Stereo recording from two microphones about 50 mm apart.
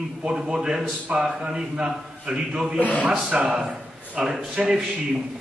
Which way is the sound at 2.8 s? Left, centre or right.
Left.